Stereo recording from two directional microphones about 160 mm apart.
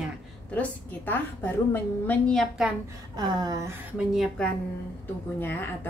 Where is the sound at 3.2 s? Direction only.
25° right (ahead or behind).